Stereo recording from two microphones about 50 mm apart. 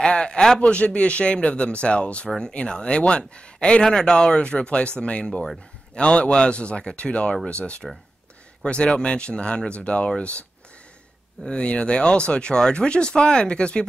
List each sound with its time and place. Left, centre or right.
0.0 s a man's voice: centre
11.4 s speech: centre